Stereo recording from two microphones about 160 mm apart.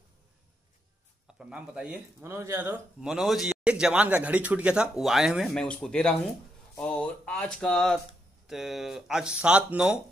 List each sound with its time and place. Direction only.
1.2 s a man's voice: 5° right (ahead or behind)